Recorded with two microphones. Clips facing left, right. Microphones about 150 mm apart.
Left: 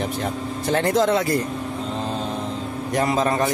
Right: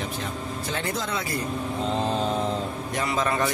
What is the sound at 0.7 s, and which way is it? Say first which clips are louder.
Speech: left 12 dB; 50° left (ahead or behind).